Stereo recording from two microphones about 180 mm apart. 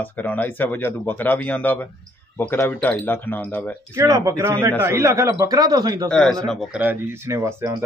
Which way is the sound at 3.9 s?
15° right (ahead or behind).